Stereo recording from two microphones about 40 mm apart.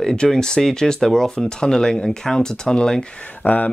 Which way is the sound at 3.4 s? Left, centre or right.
Left.